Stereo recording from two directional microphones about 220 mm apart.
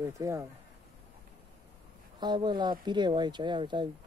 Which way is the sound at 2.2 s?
20° right (ahead or behind).